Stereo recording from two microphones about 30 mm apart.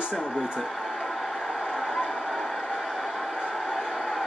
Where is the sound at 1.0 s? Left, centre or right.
Centre.